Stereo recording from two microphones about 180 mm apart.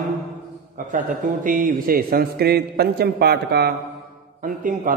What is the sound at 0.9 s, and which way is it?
A man's voice, 50° right (ahead or behind).